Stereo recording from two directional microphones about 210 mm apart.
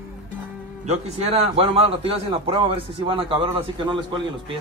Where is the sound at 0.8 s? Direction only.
30° right (ahead or behind).